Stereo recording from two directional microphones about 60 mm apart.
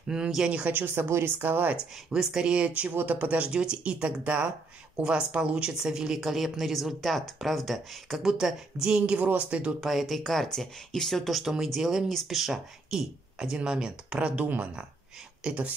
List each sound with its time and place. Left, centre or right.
0.1 s speech: centre
0.5 s speech: right
0.7 s speech: right
2.0 s speech: centre
9.8 s speech: centre; by 15.7 s right